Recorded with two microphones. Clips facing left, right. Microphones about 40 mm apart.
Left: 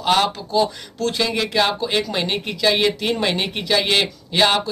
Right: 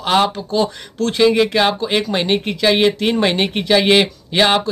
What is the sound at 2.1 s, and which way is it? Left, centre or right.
Speech, right.